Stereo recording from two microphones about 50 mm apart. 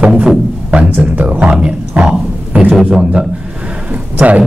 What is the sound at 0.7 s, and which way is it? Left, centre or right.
Speech, right.